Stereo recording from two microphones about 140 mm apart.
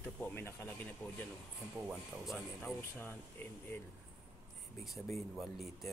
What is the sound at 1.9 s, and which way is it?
Speech, 5° left (ahead or behind).